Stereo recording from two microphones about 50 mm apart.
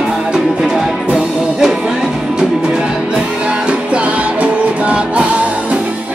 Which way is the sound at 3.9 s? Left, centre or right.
Right.